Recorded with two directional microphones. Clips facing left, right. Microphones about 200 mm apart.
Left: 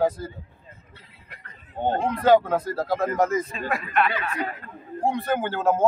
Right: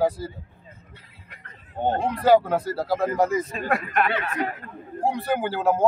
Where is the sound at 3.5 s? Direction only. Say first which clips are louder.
Right 1 dB; 45° right (ahead or behind).